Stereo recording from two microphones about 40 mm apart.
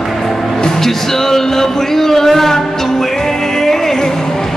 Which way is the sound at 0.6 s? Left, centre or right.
Centre.